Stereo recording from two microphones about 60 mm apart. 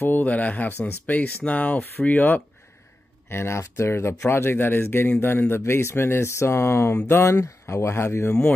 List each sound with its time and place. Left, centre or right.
0.0 s speech: left
3.3 s speech: left